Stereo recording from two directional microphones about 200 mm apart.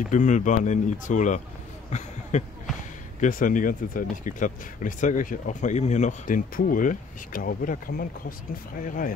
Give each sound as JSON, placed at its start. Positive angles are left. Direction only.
{"t": 0.1, "sound": "speech", "side_deg": 40}